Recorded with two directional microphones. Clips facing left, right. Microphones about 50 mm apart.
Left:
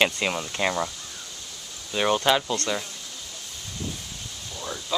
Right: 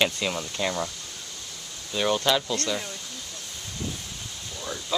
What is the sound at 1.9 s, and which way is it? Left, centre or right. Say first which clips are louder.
Speech: left 2 dB; centre.